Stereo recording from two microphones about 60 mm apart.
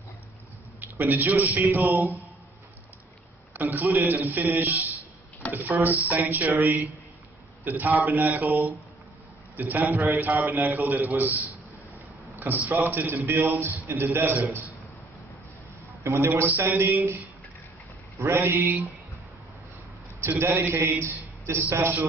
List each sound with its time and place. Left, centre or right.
0.7 s a man's voice: right
3.5 s a man's voice: right
16.0 s a man's voice: right
18.2 s a man's voice: right
20.2 s a man's voice: right